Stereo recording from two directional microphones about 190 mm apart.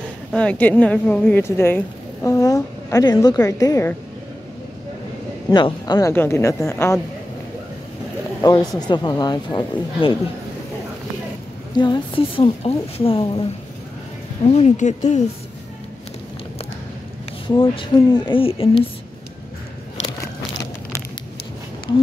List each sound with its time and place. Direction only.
0.3 s a woman's voice: 5° left (ahead or behind)
5.5 s a woman's voice: 25° left (ahead or behind)
8.4 s a woman's voice: 20° left (ahead or behind)
11.7 s a woman's voice: 25° left (ahead or behind)
14.5 s speech: 35° left (ahead or behind)
17.6 s a woman's voice: 25° left (ahead or behind)